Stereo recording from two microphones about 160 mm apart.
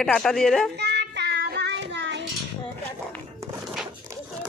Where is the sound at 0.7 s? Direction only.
90° right.